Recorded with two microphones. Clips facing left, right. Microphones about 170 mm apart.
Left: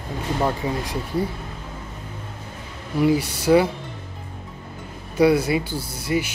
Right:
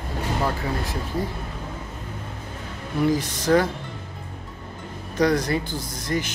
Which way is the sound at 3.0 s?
10° left (ahead or behind).